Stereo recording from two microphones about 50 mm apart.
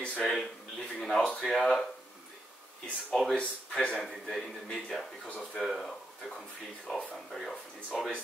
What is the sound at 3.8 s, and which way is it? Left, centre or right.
A man's voice, centre.